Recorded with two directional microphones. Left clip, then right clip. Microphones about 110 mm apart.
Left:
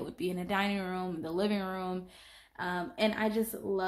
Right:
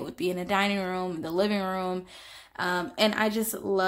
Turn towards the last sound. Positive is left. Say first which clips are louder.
# right 5 dB
turn(degrees=-55)  # may be behind; listen again after turning